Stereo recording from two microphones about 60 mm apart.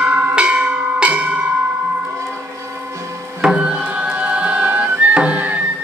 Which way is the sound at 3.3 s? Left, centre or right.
Centre.